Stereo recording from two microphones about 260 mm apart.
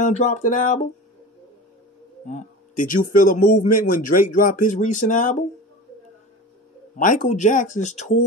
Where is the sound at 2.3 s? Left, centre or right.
Left.